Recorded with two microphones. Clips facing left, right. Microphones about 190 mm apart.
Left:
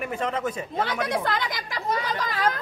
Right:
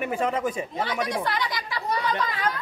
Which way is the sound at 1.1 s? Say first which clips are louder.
Left 1 dB; 50° left (ahead or behind).